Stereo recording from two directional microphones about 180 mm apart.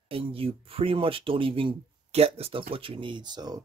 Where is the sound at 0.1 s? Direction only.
30° right (ahead or behind).